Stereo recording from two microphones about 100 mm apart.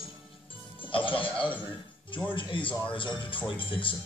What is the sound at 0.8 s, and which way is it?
Speech, 60° left (ahead or behind).